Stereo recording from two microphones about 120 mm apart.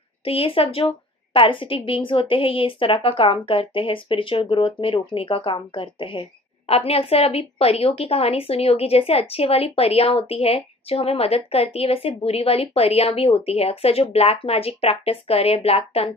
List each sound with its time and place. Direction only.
0.2 s a woman's voice: 50° left (ahead or behind)